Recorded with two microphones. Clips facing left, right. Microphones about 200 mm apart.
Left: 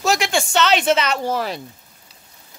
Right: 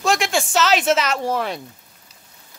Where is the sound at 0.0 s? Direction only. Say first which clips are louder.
Even; centre (ahead or behind).